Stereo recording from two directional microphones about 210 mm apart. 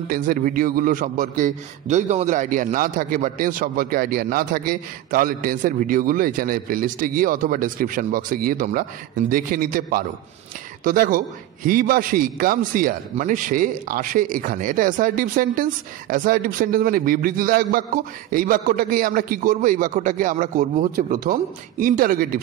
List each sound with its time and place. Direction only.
0.1 s a man's voice: 40° right (ahead or behind)